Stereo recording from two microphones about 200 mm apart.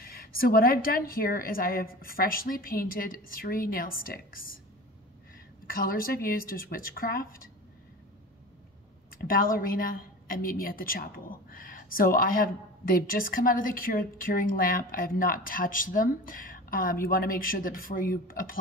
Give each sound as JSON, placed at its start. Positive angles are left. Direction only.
{"t": 0.0, "sound": "a woman's voice", "side_deg": 50}
{"t": 5.7, "sound": "a woman's voice", "side_deg": 45}
{"t": 9.2, "sound": "a woman's voice", "side_deg": 45}